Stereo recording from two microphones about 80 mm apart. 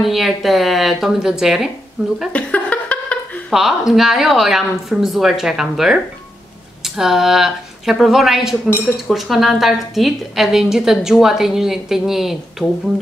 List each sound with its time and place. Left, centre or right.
0.0 s a woman's voice: centre
2.3 s a sound: centre
3.4 s a woman's voice: centre